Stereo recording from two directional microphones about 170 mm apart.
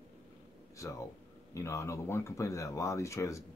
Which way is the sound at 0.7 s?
20° left (ahead or behind).